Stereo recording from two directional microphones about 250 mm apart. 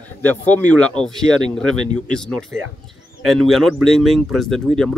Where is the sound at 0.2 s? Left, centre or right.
Centre.